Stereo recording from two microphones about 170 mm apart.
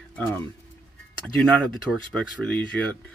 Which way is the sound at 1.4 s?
5° left (ahead or behind).